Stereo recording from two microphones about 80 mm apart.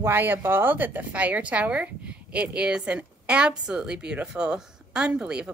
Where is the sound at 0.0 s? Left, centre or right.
Right.